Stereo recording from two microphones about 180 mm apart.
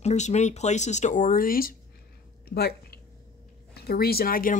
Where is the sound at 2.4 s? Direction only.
60° left (ahead or behind).